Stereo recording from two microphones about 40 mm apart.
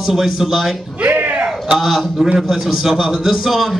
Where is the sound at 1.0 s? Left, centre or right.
Right.